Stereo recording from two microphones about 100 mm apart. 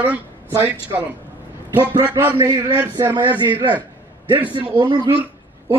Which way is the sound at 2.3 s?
40° right (ahead or behind).